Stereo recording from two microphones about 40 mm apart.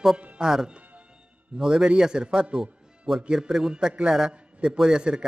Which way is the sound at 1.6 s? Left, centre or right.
Centre.